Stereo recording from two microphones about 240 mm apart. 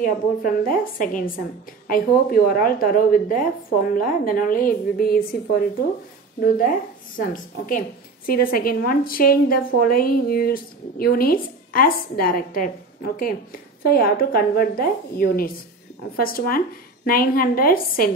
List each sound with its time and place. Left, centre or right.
0.0 s a woman's voice: left
6.4 s a woman's voice: left